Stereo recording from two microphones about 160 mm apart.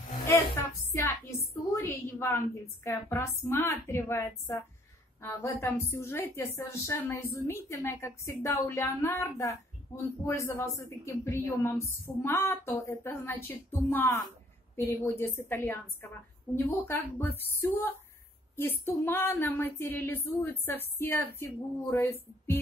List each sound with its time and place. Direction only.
0.3 s music: 15° left (ahead or behind)
1.7 s a woman's voice: 15° left (ahead or behind)